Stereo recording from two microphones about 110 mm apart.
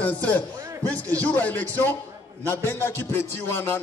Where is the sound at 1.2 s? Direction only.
15° left (ahead or behind).